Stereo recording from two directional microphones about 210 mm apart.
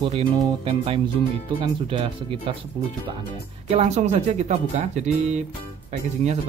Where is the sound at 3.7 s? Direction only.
30° right (ahead or behind).